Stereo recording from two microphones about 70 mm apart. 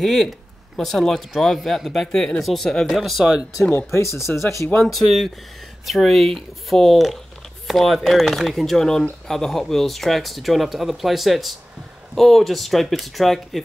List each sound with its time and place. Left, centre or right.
0.0 s speech: centre
3.0 s speech: centre
3.7 s speech: left
4.8 s speech: centre